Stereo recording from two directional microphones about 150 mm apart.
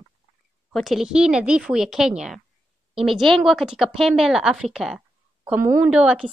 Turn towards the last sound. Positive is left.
turn(degrees=-5)  # may be behind; listen again after turning